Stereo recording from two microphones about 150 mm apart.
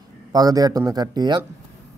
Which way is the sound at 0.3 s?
25° right (ahead or behind).